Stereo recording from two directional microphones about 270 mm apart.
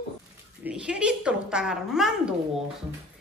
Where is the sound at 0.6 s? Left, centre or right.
Centre.